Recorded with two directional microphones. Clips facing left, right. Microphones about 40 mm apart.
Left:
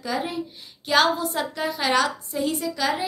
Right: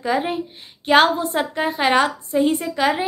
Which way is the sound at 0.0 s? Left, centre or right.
Right.